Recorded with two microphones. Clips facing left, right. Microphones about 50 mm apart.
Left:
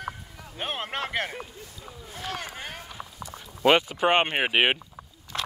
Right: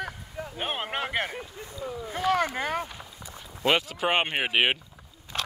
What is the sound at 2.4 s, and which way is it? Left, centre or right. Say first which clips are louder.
Speech: right 8 dB; right.